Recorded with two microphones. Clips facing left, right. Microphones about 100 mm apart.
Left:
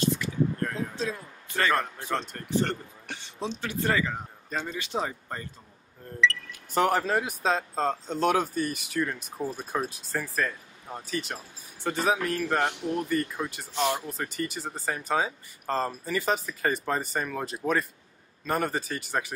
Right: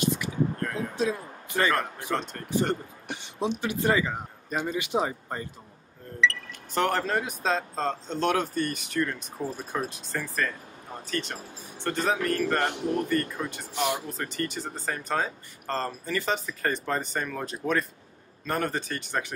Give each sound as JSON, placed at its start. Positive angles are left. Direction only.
{"t": 0.7, "sound": "a sound", "side_deg": -15}
{"t": 2.0, "sound": "speech", "side_deg": -15}
{"t": 6.2, "sound": "speech", "side_deg": 5}
{"t": 9.8, "sound": "speech", "side_deg": 0}
{"t": 13.7, "sound": "speech", "side_deg": -15}
{"t": 14.1, "sound": "speech", "side_deg": 5}